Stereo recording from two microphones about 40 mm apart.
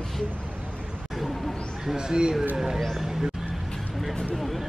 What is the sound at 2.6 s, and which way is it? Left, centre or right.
Speech, centre.